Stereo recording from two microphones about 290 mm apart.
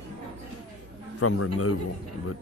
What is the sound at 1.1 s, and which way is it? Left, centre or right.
Speech, left.